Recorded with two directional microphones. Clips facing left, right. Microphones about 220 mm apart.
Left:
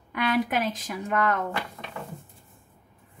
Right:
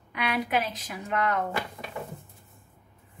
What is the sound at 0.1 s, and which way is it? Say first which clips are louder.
A woman's voice: left 3 dB; 50° left (ahead or behind).